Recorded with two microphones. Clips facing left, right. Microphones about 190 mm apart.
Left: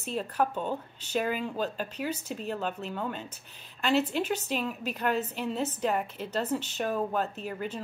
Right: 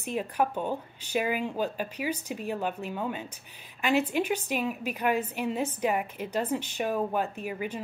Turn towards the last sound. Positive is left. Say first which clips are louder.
# right 1 dB
turn(degrees=-10)  # may be behind; listen again after turning